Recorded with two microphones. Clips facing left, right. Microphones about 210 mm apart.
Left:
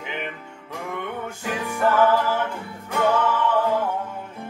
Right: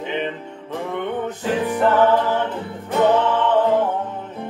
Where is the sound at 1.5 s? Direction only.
25° right (ahead or behind).